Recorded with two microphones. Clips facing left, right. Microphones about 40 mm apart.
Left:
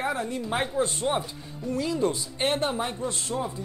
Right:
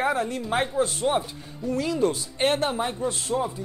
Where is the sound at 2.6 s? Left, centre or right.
Centre.